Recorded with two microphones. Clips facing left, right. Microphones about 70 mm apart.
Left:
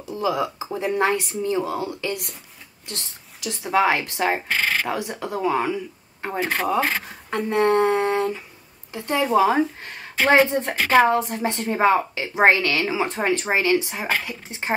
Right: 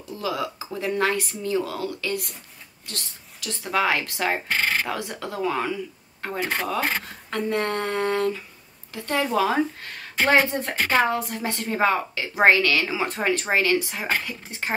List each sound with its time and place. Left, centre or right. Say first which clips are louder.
0.1 s a woman's voice: left 4 dB; left